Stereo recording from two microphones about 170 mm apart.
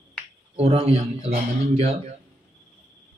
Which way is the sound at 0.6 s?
35° right (ahead or behind).